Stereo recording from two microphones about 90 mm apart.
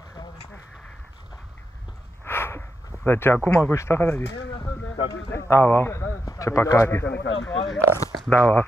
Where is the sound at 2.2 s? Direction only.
25° left (ahead or behind).